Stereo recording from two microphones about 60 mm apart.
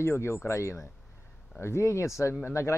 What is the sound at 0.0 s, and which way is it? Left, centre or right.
Speech, left.